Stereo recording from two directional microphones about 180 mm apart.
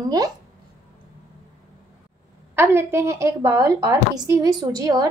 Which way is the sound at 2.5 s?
15° right (ahead or behind).